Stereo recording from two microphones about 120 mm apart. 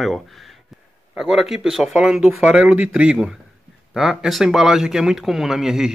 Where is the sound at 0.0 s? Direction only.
Centre (ahead or behind).